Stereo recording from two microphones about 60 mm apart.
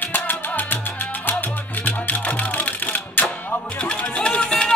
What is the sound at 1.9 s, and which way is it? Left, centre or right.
Music, left.